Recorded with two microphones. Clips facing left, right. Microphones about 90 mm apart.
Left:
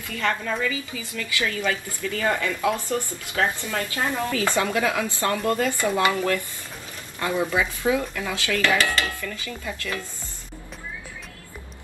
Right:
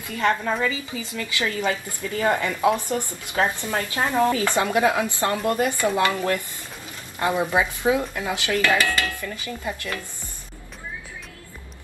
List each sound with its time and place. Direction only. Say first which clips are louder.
0.1 s a woman's voice: right 3 dB; 25° right (ahead or behind)
7.2 s a woman's voice: right 2 dB; 25° right (ahead or behind)
8.7 s dishes: right 1 dB; 20° left (ahead or behind)
9.2 s a woman's voice: right 2 dB; 25° right (ahead or behind)